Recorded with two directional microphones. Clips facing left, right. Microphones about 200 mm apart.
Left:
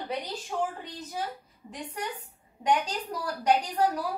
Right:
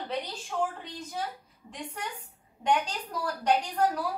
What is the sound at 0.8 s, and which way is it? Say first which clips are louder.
A woman's voice: left 1 dB; 5° left (ahead or behind).